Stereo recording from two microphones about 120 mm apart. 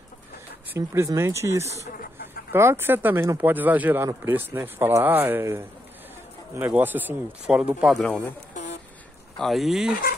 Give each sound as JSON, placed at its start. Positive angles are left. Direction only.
{"t": 0.7, "sound": "speech", "side_deg": -25}
{"t": 7.8, "sound": "speech", "side_deg": 0}
{"t": 8.1, "sound": "speech", "side_deg": 15}
{"t": 9.4, "sound": "speech", "side_deg": 0}